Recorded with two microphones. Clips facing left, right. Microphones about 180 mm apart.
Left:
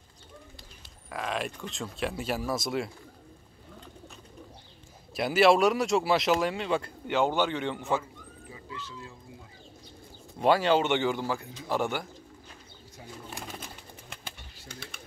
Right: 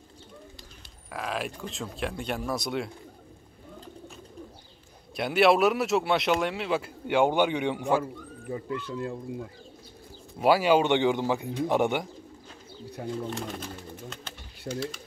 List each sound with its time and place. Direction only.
1.1 s speech: centre (ahead or behind)
5.1 s speech: centre (ahead or behind)
8.0 s speech: 55° right (ahead or behind)
10.4 s speech: 10° right (ahead or behind)
13.0 s speech: 60° right (ahead or behind)
14.0 s bird: 15° left (ahead or behind)
14.7 s speech: 55° left (ahead or behind)